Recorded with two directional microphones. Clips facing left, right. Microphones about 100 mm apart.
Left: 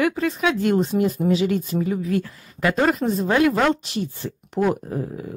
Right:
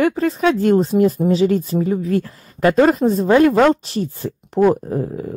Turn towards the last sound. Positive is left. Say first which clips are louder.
# right 5 dB
turn(degrees=-35)  # may be behind; listen again after turning